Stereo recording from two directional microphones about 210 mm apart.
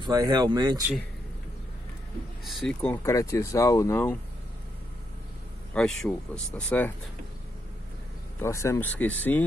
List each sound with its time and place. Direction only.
0.0 s speech: 20° right (ahead or behind)
2.4 s speech: centre (ahead or behind)
5.8 s speech: 5° left (ahead or behind)
8.4 s speech: 15° left (ahead or behind)